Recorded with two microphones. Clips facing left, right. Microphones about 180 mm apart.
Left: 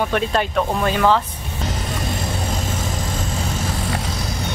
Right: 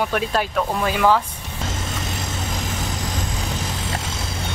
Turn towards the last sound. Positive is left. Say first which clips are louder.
# left 3 dB
turn(degrees=-20)  # may be behind; listen again after turning